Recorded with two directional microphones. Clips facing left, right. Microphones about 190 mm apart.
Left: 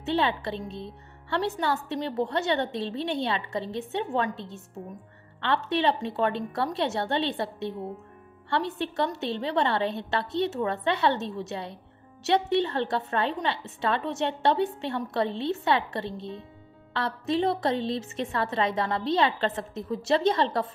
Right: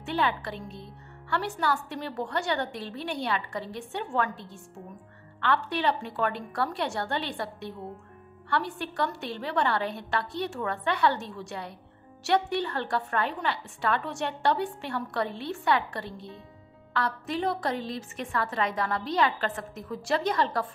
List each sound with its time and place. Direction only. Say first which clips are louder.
0.0 s a woman's voice: left 3 dB; 25° left (ahead or behind)